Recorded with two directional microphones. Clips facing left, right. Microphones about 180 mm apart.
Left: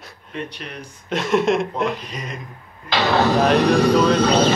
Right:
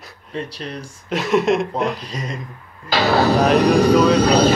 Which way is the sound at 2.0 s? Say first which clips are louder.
Right 3 dB; 35° right (ahead or behind).